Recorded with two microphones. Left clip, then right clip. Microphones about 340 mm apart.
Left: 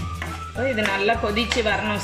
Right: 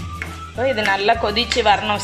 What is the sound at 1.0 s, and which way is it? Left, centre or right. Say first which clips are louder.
A woman's voice: right 4 dB; centre.